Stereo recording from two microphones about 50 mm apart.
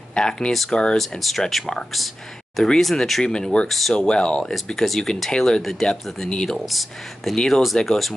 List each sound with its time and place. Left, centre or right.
0.1 s speech: centre
0.9 s speech: centre
3.3 s speech: centre
3.6 s speech: centre
3.9 s speech: centre
4.5 s speech: centre
6.6 s speech: centre